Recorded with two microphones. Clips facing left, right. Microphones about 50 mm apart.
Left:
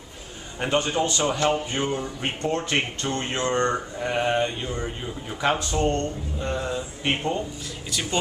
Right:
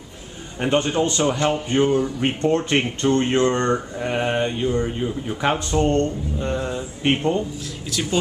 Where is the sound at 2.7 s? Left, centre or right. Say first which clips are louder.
Right 6 dB; right.